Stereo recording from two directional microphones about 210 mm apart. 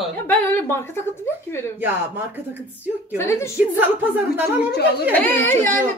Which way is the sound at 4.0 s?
10° right (ahead or behind).